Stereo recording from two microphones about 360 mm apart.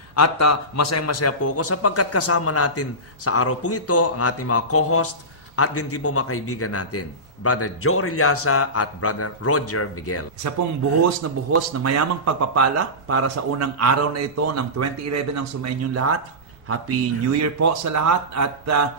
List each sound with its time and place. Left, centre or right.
0.1 s a man's voice: left
10.4 s speech: right